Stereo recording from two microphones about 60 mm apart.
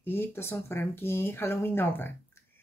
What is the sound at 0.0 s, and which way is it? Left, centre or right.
A woman's voice, left.